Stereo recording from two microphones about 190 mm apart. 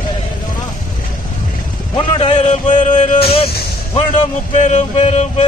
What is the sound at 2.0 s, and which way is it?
Music, 30° left (ahead or behind).